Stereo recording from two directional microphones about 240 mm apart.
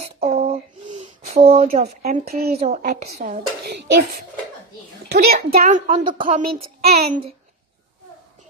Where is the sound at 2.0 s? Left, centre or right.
Right.